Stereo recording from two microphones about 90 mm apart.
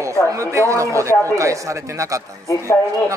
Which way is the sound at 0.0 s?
35° right (ahead or behind).